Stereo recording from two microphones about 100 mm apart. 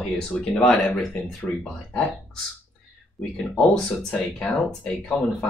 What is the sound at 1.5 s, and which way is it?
Speech, 20° left (ahead or behind).